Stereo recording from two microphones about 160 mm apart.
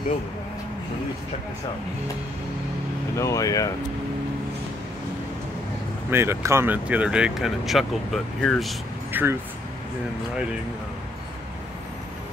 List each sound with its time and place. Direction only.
3.2 s speech: 20° left (ahead or behind)
6.0 s speech: 15° right (ahead or behind); by 8.7 s 5° left (ahead or behind)
9.1 s speech: 15° right (ahead or behind)